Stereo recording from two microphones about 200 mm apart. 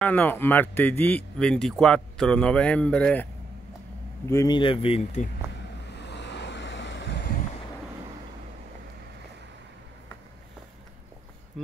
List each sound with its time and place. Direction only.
0.0 s a man's voice: 10° left (ahead or behind)
4.3 s speech: 20° left (ahead or behind)
5.9 s waves: 60° left (ahead or behind)
11.6 s a sound: centre (ahead or behind)